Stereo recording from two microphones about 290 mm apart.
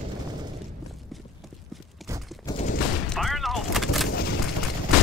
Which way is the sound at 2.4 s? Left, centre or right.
Centre.